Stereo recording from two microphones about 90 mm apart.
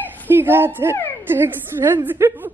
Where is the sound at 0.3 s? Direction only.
25° right (ahead or behind).